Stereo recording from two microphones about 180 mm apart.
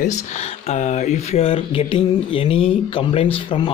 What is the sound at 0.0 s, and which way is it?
Speech, 40° left (ahead or behind).